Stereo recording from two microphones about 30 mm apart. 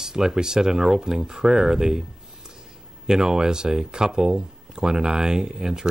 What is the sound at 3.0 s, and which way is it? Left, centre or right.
Speech, right.